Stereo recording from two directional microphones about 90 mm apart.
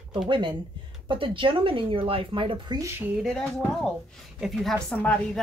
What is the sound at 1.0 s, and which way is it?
Speech, 70° right (ahead or behind).